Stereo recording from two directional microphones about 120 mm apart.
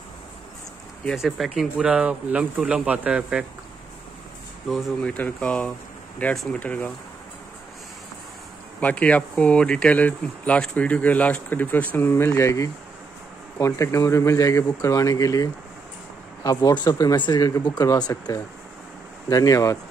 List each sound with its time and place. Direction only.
1.0 s speech: centre (ahead or behind)
4.6 s speech: centre (ahead or behind)
5.0 s speech: 10° left (ahead or behind)
6.6 s speech: 10° left (ahead or behind)
8.8 s speech: 10° left (ahead or behind); by 19.8 s 30° left (ahead or behind)